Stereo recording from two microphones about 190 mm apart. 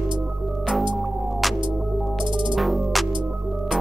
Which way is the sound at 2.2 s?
25° right (ahead or behind).